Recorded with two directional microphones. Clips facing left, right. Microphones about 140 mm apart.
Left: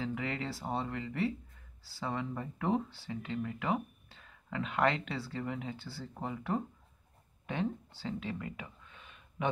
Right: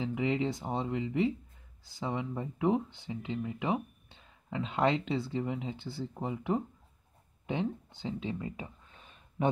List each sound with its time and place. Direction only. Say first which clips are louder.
0.0 s speech: right 6 dB; 20° right (ahead or behind); by 9.5 s 35° right (ahead or behind)